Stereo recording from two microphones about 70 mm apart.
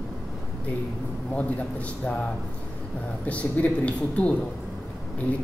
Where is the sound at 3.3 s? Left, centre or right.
Left.